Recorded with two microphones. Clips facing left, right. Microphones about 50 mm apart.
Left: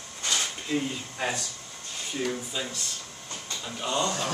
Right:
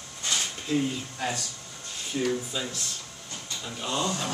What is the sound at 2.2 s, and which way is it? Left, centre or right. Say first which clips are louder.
Speech: right 3 dB; centre.